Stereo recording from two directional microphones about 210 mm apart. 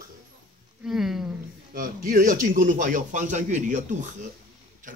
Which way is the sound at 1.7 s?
40° right (ahead or behind).